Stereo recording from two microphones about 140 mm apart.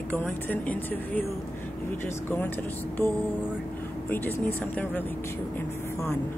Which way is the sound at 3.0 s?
15° left (ahead or behind).